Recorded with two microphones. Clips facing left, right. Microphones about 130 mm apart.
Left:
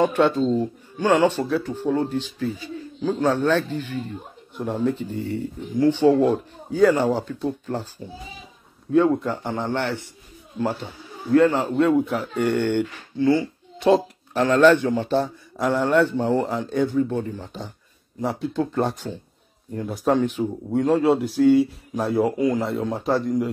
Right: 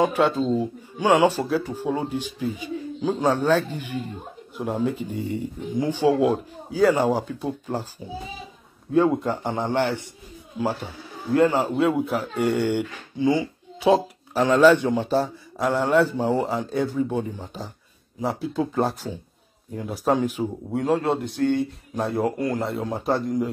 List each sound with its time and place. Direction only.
0.0 s speech: 5° right (ahead or behind)
8.9 s speech: 10° right (ahead or behind)
13.8 s speech: 5° right (ahead or behind)
15.1 s speech: centre (ahead or behind)